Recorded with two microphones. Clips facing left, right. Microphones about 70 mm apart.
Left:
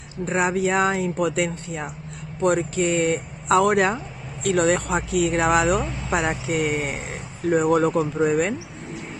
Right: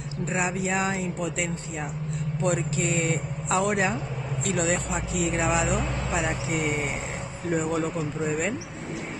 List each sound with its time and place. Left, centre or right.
0.3 s speech: left
8.2 s speech: left